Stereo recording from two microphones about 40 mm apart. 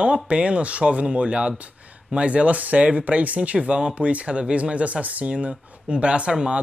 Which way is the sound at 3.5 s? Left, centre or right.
Right.